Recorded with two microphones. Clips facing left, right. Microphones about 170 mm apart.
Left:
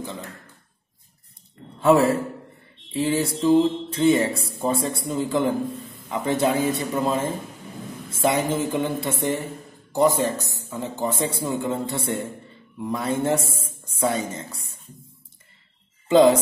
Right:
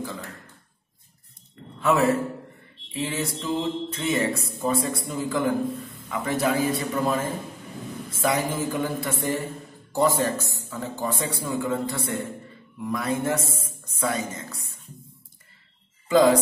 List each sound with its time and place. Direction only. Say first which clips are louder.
1.8 s a man's voice: left 4 dB; 30° left (ahead or behind)
16.1 s speech: left 3 dB; 25° left (ahead or behind)